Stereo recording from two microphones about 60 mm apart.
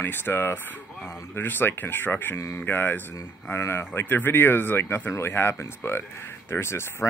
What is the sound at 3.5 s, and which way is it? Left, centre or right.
Speech, left.